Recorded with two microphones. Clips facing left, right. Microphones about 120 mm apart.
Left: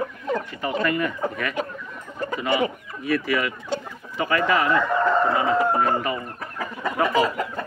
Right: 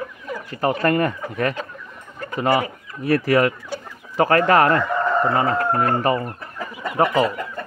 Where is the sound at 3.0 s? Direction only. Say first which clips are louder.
Right 6 dB; 40° right (ahead or behind).